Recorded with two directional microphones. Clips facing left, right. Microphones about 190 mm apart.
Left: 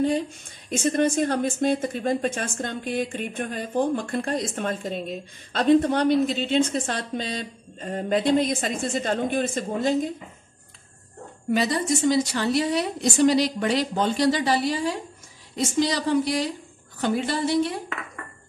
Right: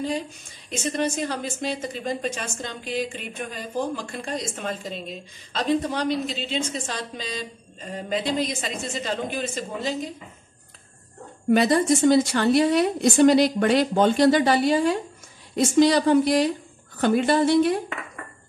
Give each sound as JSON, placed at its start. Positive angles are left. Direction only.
{"t": 0.7, "sound": "a woman's voice", "side_deg": 55}
{"t": 11.5, "sound": "a woman's voice", "side_deg": -55}